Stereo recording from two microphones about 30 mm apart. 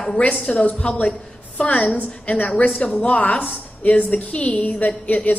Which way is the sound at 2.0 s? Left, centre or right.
Left.